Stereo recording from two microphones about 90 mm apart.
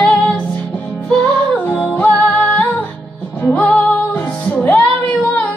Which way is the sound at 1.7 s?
15° left (ahead or behind).